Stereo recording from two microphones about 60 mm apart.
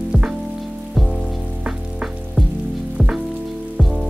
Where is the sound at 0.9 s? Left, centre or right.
Centre.